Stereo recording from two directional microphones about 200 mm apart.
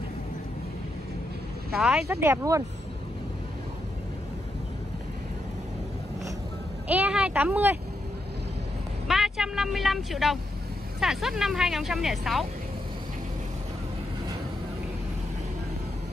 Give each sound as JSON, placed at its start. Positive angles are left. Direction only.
{"t": 1.8, "sound": "speech", "side_deg": -5}
{"t": 2.2, "sound": "speech", "side_deg": -15}
{"t": 6.9, "sound": "a sound", "side_deg": -5}
{"t": 9.0, "sound": "speech", "side_deg": 0}